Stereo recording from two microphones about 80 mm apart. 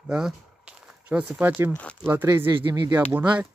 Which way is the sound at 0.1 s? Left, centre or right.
Centre.